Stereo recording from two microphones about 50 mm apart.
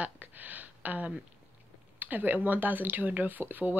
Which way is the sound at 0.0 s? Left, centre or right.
Right.